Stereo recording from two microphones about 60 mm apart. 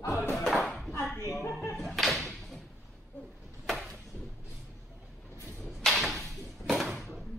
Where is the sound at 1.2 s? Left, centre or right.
Left.